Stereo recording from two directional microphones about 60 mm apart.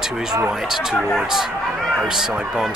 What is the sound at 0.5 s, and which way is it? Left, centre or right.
Speech, centre.